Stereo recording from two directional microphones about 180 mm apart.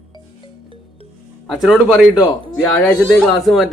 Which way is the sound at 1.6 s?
Centre (ahead or behind).